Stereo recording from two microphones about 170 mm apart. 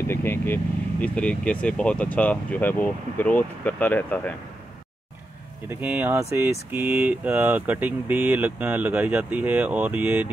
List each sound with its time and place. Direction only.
0.1 s vehicle: 15° left (ahead or behind)
1.0 s speech: 5° left (ahead or behind)
5.7 s speech: 10° right (ahead or behind)